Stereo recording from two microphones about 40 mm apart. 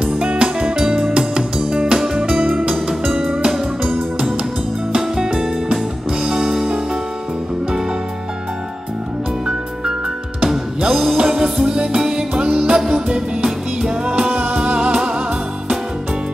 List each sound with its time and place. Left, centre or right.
0.1 s music: right
0.6 s music: right
2.7 s music: centre
4.2 s music: right
5.0 s music: centre
9.5 s music: centre